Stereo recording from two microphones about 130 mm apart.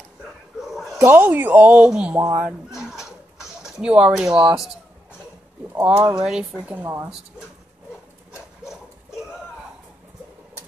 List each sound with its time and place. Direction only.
0.6 s a sound: centre (ahead or behind)
0.9 s speech: 15° right (ahead or behind)
2.3 s a sound: 10° right (ahead or behind)
3.8 s speech: 5° right (ahead or behind)
5.9 s speech: 25° right (ahead or behind)
6.2 s speech: 5° right (ahead or behind)
6.8 s speech: 20° right (ahead or behind)